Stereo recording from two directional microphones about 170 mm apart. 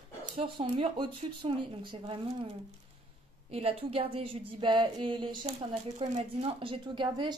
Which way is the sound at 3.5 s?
35° right (ahead or behind).